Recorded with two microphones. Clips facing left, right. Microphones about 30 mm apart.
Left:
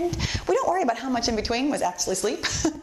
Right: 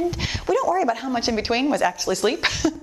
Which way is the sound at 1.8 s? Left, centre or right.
Right.